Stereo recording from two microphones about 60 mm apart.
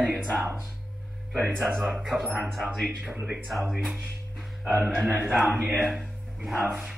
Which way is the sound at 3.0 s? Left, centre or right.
Right.